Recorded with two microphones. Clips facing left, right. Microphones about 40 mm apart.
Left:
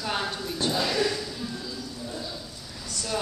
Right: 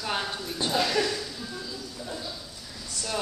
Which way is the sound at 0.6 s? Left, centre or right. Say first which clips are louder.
Left 2 dB; right.